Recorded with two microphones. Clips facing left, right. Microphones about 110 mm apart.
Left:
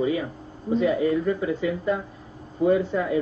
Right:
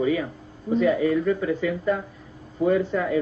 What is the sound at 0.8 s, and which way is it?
Speech, 20° left (ahead or behind).